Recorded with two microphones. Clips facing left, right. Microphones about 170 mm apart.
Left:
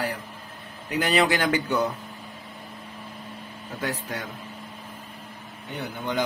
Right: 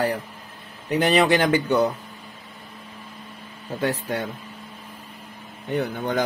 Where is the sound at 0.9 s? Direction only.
30° right (ahead or behind).